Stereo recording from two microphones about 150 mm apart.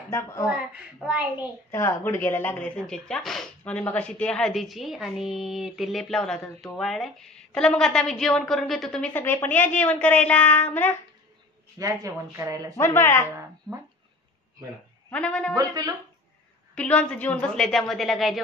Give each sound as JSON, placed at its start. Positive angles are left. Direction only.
{"t": 0.1, "sound": "a woman's voice", "side_deg": 20}
{"t": 0.5, "sound": "speech", "side_deg": -5}
{"t": 1.7, "sound": "speech", "side_deg": 15}
{"t": 11.8, "sound": "speech", "side_deg": -20}
{"t": 12.7, "sound": "a woman's voice", "side_deg": 15}
{"t": 13.7, "sound": "speech", "side_deg": -20}
{"t": 15.0, "sound": "a woman's voice", "side_deg": 10}
{"t": 15.5, "sound": "speech", "side_deg": -25}
{"t": 16.7, "sound": "speech", "side_deg": 5}